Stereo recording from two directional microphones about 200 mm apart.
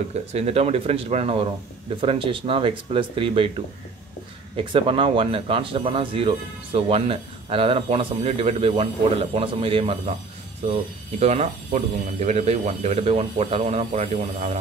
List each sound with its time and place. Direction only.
0.3 s speech: 30° right (ahead or behind)
4.7 s speech: 25° right (ahead or behind)